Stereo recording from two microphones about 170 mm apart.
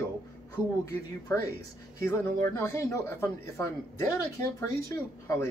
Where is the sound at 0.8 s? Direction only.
20° left (ahead or behind).